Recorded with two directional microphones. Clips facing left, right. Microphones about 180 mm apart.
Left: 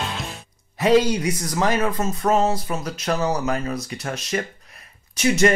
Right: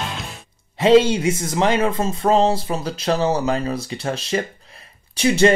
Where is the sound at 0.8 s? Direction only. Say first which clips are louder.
Right 4 dB; 25° right (ahead or behind).